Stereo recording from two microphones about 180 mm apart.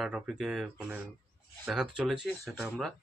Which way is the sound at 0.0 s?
5° right (ahead or behind).